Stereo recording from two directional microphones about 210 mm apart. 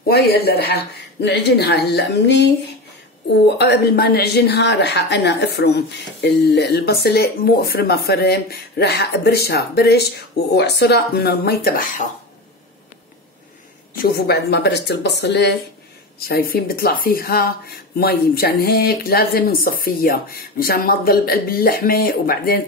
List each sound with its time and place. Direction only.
0.1 s a woman's voice: 50° left (ahead or behind)
3.5 s a woman's voice: 50° left (ahead or behind)
13.9 s a woman's voice: 45° left (ahead or behind)